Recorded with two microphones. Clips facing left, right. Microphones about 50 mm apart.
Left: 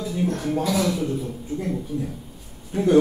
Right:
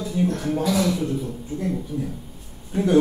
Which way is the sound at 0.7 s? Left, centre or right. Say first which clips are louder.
Right 2 dB; centre.